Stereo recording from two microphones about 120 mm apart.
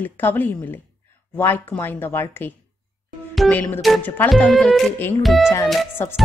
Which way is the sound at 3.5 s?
15° left (ahead or behind).